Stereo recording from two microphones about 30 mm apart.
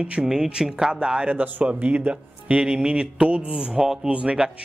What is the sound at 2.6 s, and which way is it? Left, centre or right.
Speech, right.